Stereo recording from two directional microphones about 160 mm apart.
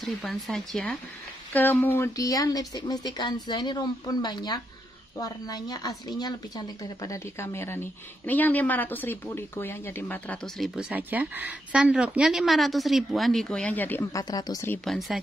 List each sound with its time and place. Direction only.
0.0 s speech: centre (ahead or behind)
1.5 s a woman's voice: 10° left (ahead or behind)
10.8 s speech: 10° right (ahead or behind); by 14.7 s 20° left (ahead or behind)
14.9 s speech: centre (ahead or behind)